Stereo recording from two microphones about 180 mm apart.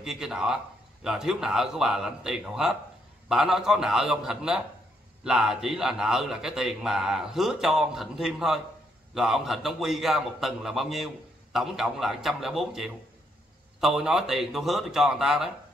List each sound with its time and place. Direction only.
0.0 s a man's voice: 5° right (ahead or behind)